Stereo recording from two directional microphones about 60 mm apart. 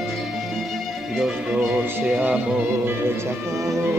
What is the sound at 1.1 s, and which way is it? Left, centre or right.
Music, centre.